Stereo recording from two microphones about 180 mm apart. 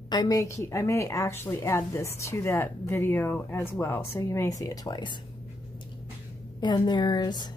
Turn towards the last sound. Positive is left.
turn(degrees=25)  # may be behind; listen again after turning